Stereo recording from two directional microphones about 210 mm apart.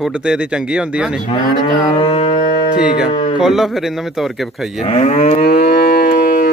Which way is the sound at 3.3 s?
Centre (ahead or behind).